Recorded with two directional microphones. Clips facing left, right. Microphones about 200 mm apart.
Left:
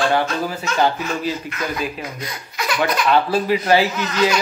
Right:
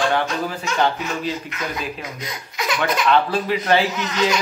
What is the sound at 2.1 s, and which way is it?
Speech, 20° right (ahead or behind).